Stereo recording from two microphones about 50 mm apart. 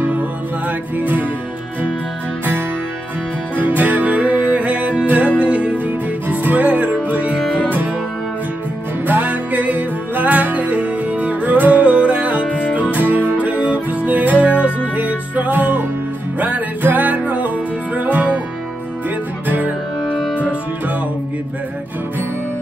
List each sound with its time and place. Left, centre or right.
0.0 s music: right
3.5 s music: right
6.2 s music: right
9.0 s music: right
12.4 s music: left
12.7 s music: right
13.4 s music: right
19.4 s music: right